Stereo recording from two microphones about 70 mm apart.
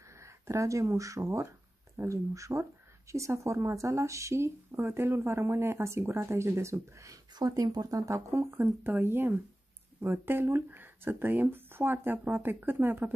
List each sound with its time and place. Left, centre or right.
0.2 s speech: right
7.3 s speech: right
8.3 s speech: right